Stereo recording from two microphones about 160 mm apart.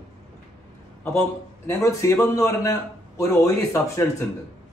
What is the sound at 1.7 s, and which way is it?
A man's voice, 20° left (ahead or behind).